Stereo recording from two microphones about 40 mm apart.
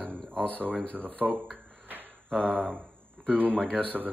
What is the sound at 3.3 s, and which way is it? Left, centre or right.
Speech, right.